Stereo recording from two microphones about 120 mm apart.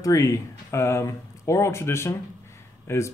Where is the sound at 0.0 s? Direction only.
25° left (ahead or behind).